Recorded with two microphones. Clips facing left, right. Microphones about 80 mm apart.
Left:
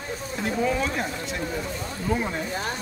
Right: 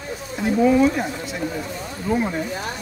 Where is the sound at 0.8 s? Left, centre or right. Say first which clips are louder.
Right 8 dB; centre.